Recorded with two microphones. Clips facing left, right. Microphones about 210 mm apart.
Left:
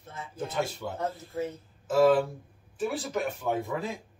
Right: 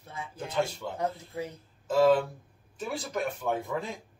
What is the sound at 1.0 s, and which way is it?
Speech, 10° right (ahead or behind).